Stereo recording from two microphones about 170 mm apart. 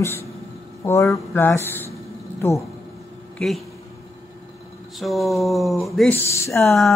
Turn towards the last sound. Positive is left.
turn(degrees=15)  # may be behind; listen again after turning